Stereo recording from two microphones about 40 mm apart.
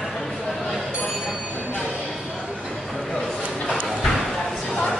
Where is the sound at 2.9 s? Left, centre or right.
Centre.